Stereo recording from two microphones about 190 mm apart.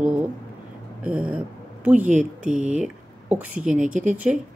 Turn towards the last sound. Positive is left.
turn(degrees=-5)  # may be behind; listen again after turning